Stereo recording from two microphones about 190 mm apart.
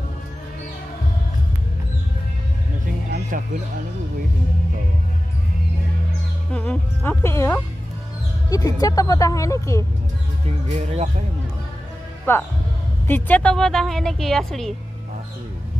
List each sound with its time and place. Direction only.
6.5 s speech: 5° left (ahead or behind)
10.9 s speech: 35° right (ahead or behind)
12.3 s a woman's voice: 10° left (ahead or behind)